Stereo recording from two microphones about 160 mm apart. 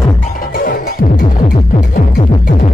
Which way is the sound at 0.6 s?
65° left (ahead or behind).